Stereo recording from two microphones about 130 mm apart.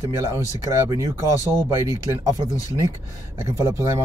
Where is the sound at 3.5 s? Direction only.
20° right (ahead or behind).